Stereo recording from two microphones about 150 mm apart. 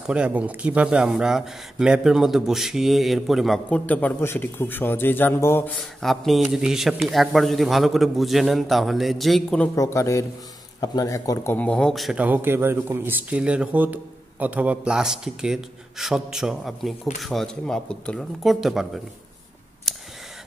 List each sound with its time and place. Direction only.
0.0 s speech: 5° right (ahead or behind); by 5.7 s 15° left (ahead or behind)
5.8 s speech: centre (ahead or behind)
9.8 s speech: 20° left (ahead or behind)
11.5 s a man's voice: 10° left (ahead or behind)